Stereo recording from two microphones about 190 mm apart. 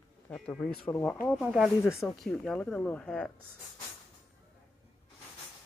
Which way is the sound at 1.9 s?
15° left (ahead or behind).